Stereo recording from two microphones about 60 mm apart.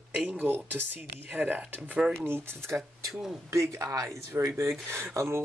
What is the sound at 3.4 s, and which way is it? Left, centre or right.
Speech, right.